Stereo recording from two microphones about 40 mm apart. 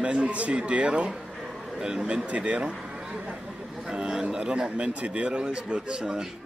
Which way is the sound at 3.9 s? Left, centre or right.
Centre.